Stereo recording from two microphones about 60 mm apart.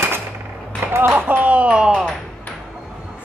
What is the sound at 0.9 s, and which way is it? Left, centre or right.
Speech, right.